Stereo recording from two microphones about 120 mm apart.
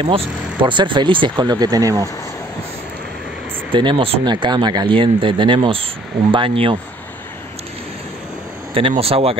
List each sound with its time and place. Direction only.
0.0 s speech: 40° right (ahead or behind)
3.7 s speech: 45° right (ahead or behind)
8.7 s speech: 50° right (ahead or behind)